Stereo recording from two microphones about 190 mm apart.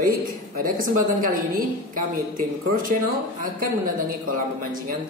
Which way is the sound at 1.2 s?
50° right (ahead or behind).